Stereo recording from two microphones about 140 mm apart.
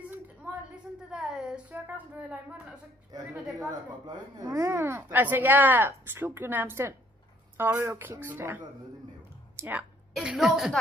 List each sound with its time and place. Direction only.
0.1 s a sound: 10° right (ahead or behind)
1.1 s a woman's voice: 5° right (ahead or behind)
3.1 s speech: 30° right (ahead or behind); by 9.8 s 10° right (ahead or behind)
10.1 s a woman's voice: centre (ahead or behind)